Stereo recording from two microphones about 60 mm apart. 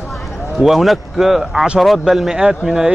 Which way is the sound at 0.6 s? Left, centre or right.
Centre.